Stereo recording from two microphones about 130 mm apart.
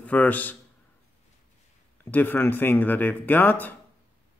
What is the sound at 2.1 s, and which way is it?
Speech, 15° left (ahead or behind).